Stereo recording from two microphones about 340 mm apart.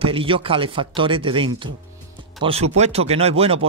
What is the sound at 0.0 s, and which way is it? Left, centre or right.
Speech, centre.